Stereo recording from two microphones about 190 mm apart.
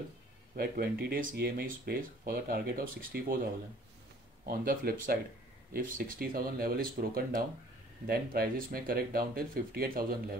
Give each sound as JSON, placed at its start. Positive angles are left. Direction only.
{"t": 0.6, "sound": "speech", "side_deg": -55}
{"t": 4.5, "sound": "speech", "side_deg": -50}